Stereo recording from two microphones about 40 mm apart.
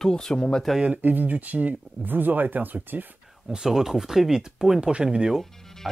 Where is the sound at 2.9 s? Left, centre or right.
Right.